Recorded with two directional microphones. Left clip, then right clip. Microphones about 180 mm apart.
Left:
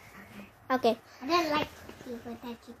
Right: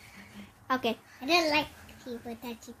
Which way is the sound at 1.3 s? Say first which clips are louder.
Right 2 dB; 35° right (ahead or behind).